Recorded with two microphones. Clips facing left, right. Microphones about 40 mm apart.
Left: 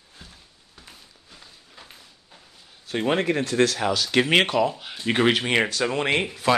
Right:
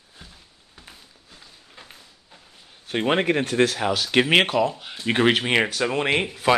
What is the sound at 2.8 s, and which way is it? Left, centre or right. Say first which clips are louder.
Speech: right 2 dB; right.